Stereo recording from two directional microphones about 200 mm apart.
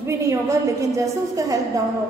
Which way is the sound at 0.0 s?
15° right (ahead or behind).